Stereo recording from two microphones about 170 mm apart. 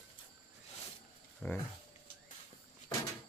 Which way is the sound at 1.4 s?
10° left (ahead or behind).